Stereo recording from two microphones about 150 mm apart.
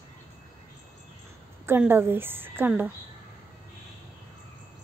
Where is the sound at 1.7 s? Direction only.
15° right (ahead or behind).